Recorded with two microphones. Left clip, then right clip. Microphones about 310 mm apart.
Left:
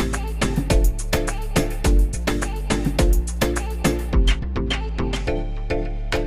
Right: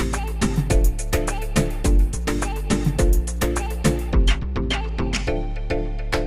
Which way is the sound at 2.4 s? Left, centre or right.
Centre.